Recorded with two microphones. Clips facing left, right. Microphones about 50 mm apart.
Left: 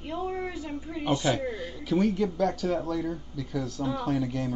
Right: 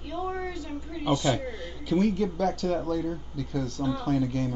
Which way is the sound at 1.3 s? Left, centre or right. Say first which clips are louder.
Left 2 dB; centre.